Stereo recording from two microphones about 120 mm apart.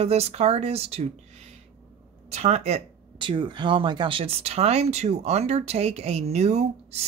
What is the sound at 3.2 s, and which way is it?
Speech, 45° right (ahead or behind).